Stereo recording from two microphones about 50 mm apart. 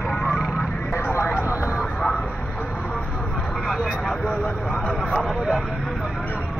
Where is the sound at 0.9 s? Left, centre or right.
Left.